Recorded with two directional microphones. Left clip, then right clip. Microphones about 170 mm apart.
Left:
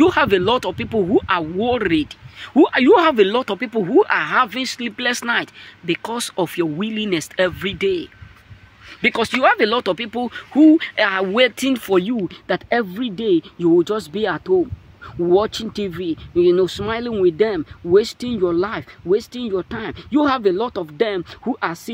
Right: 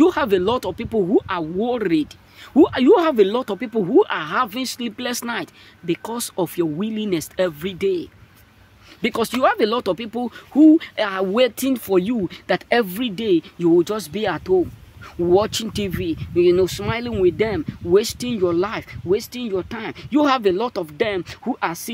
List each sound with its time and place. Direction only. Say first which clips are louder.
0.0 s speech: left 2 dB; 10° right (ahead or behind)
9.0 s speech: left 3 dB; 20° right (ahead or behind); by 21.9 s centre (ahead or behind)